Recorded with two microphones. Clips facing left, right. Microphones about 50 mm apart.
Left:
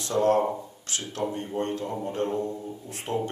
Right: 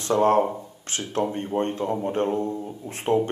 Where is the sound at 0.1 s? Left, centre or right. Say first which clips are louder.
Right 3 dB; right.